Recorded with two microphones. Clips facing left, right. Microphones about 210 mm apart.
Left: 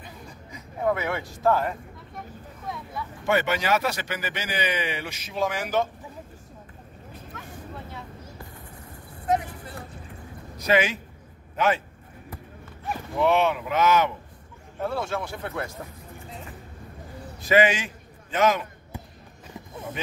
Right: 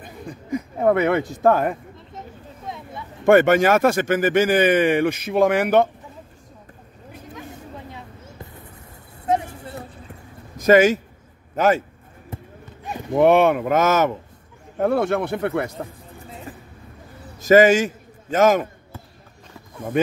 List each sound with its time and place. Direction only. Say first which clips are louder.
0.0 s a sound: right 7 dB; 55° right (ahead or behind)
1.4 s speech: right 4 dB; 55° right (ahead or behind)
2.7 s a sound: left 1 dB; 20° right (ahead or behind)
3.3 s speech: right 10 dB; 50° right (ahead or behind)
7.3 s vehicle: right 6 dB; 15° right (ahead or behind)
9.2 s a sound: right 3 dB; 25° right (ahead or behind)
10.6 s speech: right 9 dB; 45° right (ahead or behind)
12.3 s clip-clop: right 5 dB; 20° right (ahead or behind)
13.2 s speech: right 7 dB; 55° right (ahead or behind)
14.8 s speech: right 9 dB; 55° right (ahead or behind)
17.4 s a man's voice: right 8 dB; 45° right (ahead or behind)